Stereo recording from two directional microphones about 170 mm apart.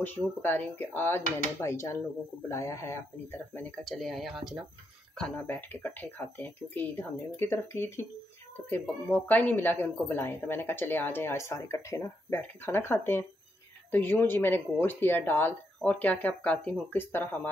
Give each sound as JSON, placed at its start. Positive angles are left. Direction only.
{"t": 0.0, "sound": "speech", "side_deg": 10}
{"t": 3.8, "sound": "speech", "side_deg": 0}